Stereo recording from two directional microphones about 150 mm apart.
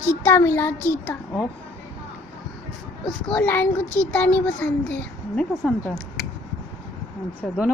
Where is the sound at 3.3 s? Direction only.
10° left (ahead or behind).